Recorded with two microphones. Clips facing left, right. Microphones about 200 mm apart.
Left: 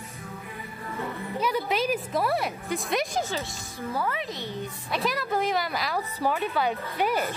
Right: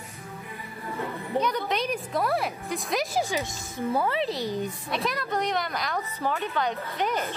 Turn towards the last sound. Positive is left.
turn(degrees=10)  # may be behind; listen again after turning